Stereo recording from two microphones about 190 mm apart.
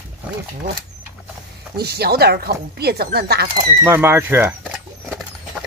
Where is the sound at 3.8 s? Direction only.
10° right (ahead or behind).